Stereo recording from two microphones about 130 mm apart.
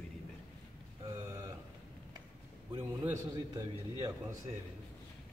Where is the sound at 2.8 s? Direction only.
15° right (ahead or behind).